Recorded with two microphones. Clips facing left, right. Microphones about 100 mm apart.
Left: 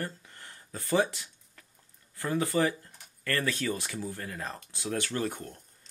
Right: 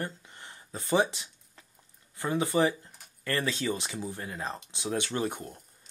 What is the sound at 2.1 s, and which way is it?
Speech, 20° right (ahead or behind).